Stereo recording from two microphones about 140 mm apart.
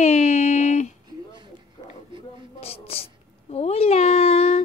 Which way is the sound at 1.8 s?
30° left (ahead or behind).